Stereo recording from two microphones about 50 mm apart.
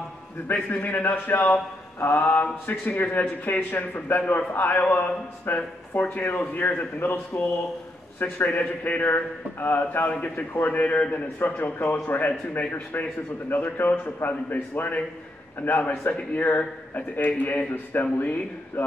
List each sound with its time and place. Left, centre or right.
0.5 s a man's voice: left
5.9 s a man's voice: left
6.3 s a man's voice: left
6.6 s a man's voice: left
10.1 s a man's voice: left